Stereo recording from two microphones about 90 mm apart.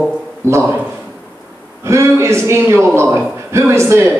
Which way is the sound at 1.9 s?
30° right (ahead or behind).